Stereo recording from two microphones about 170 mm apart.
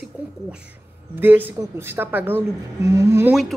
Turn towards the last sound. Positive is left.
turn(degrees=-15)  # may be behind; listen again after turning